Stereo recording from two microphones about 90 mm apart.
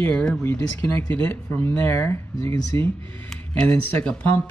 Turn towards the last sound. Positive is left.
turn(degrees=20)  # may be behind; listen again after turning